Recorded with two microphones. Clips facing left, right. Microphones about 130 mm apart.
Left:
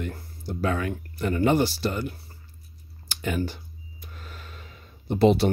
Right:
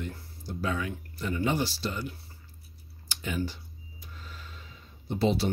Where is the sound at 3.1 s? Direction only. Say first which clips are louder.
Left 4 dB; 55° left (ahead or behind).